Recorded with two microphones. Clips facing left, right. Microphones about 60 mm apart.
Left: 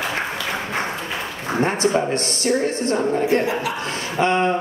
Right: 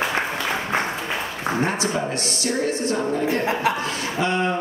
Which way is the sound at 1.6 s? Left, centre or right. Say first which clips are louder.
Left 6 dB; left.